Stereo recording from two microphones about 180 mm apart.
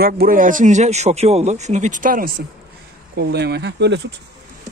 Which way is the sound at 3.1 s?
65° right (ahead or behind).